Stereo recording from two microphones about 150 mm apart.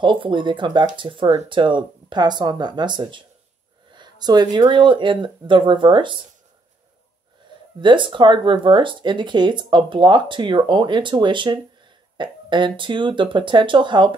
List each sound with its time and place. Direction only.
0.0 s speech: 35° right (ahead or behind)
7.8 s speech: 35° right (ahead or behind)